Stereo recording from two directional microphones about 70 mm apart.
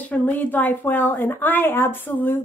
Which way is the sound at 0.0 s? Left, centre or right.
Left.